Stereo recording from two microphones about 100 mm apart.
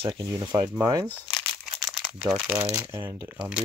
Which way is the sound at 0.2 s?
40° right (ahead or behind).